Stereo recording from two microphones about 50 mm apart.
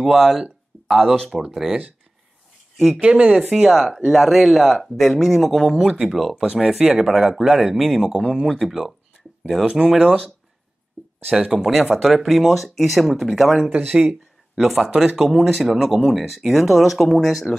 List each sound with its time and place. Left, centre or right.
0.0 s speech: centre
1.3 s speech: centre
3.0 s speech: right
3.7 s speech: centre
6.3 s speech: centre
11.3 s speech: centre
13.6 s speech: right
14.6 s speech: centre